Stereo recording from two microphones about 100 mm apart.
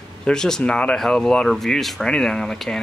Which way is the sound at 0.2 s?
5° left (ahead or behind).